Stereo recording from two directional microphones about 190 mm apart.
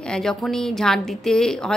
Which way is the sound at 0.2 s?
Centre (ahead or behind).